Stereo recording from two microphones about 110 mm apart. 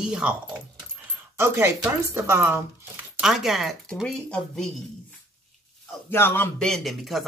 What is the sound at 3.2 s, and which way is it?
Speech, 5° right (ahead or behind).